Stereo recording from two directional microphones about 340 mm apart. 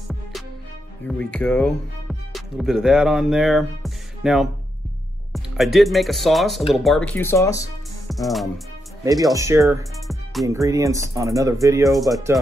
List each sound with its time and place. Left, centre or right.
1.0 s speech: centre
8.1 s music: centre
9.0 s speech: centre